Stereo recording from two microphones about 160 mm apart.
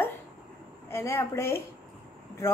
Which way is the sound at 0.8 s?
15° left (ahead or behind).